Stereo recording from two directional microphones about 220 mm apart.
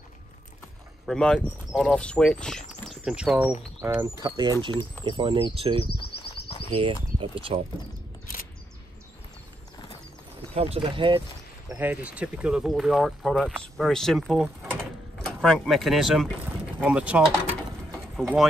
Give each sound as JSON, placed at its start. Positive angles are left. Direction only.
{"t": 1.0, "sound": "speech", "side_deg": 5}
{"t": 10.5, "sound": "speech", "side_deg": -25}
{"t": 11.7, "sound": "speech", "side_deg": -5}
{"t": 18.0, "sound": "pigeon", "side_deg": 0}